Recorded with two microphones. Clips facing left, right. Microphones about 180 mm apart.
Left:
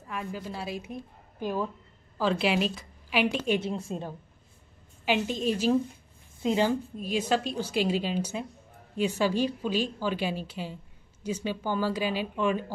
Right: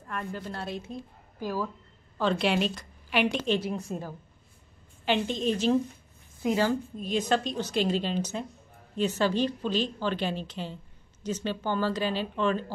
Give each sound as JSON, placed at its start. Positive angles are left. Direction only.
{"t": 0.0, "sound": "a woman's voice", "side_deg": 5}
{"t": 0.8, "sound": "a woman's voice", "side_deg": 20}
{"t": 2.1, "sound": "a woman's voice", "side_deg": 5}
{"t": 3.6, "sound": "a woman's voice", "side_deg": 25}
{"t": 5.0, "sound": "a woman's voice", "side_deg": 5}
{"t": 6.4, "sound": "a woman's voice", "side_deg": 20}
{"t": 6.7, "sound": "a woman's voice", "side_deg": 5}